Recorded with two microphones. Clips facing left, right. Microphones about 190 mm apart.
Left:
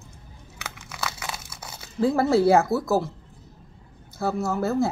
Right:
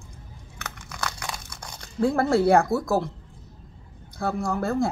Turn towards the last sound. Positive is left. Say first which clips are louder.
# left 1 dB
turn(degrees=5)  # may be behind; listen again after turning